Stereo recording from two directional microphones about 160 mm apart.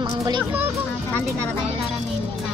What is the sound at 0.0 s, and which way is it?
Music, 20° right (ahead or behind).